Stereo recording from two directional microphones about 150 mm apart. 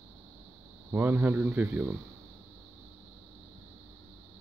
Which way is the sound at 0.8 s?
15° right (ahead or behind).